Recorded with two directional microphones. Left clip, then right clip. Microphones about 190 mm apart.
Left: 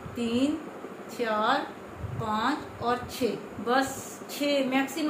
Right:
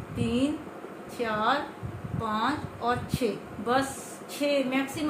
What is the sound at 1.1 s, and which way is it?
A woman's voice, 5° right (ahead or behind).